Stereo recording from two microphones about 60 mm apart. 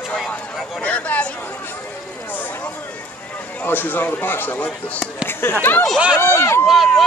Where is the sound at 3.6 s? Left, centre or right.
Left.